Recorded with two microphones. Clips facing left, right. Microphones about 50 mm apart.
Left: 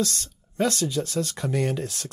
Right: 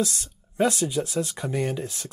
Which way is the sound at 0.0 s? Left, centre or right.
Centre.